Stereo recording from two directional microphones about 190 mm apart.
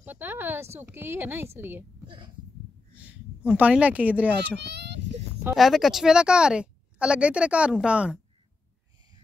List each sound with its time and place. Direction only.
0.0 s speech: 10° right (ahead or behind)
2.0 s a sound: 25° right (ahead or behind)
3.0 s speech: 5° right (ahead or behind)
4.6 s a child's voice: 60° right (ahead or behind)
5.4 s a woman's voice: 5° right (ahead or behind)